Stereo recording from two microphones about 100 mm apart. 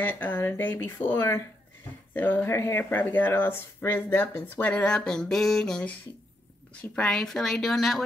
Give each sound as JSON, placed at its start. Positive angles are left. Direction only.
{"t": 0.0, "sound": "speech", "side_deg": 20}